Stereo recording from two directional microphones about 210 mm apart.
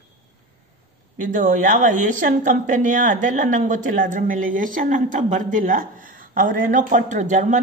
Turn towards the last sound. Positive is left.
turn(degrees=-35)  # may be behind; listen again after turning